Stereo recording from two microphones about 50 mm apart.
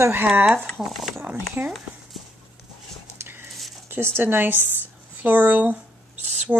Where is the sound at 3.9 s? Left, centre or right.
Right.